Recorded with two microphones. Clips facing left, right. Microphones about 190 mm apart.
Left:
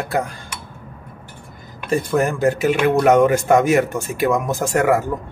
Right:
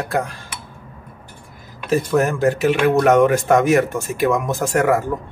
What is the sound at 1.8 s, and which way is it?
Speech, centre (ahead or behind).